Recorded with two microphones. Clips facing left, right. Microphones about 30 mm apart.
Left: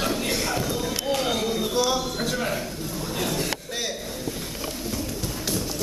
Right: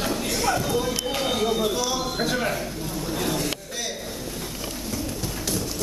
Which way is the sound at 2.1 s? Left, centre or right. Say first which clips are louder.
Right 2 dB; centre.